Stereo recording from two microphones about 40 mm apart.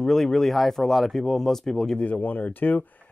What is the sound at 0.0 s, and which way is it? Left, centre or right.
Speech, centre.